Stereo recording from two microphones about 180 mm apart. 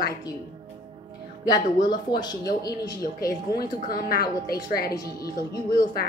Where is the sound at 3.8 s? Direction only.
55° left (ahead or behind).